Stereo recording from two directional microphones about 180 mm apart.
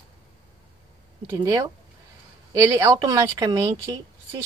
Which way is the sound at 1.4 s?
20° right (ahead or behind).